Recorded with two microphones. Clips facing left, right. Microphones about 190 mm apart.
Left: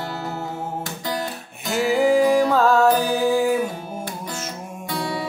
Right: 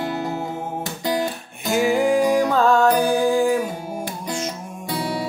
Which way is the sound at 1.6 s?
Centre (ahead or behind).